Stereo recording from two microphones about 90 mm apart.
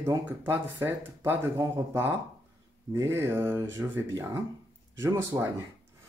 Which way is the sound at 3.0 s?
30° right (ahead or behind).